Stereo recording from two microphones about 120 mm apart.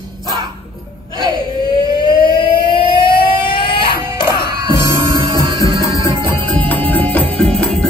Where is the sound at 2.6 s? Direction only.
40° left (ahead or behind).